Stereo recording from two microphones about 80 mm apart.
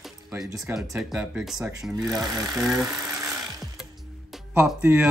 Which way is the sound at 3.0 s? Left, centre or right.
Right.